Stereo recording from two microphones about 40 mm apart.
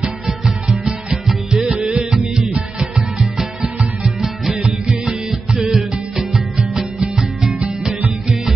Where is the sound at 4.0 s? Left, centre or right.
Centre.